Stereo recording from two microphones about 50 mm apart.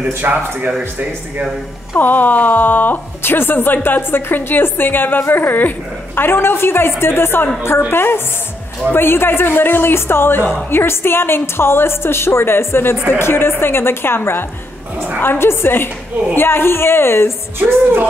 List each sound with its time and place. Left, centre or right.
0.2 s speech: right
2.0 s a woman's voice: left
17.6 s music: right